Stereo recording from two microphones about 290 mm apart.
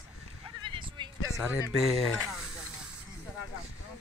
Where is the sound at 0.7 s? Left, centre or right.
Centre.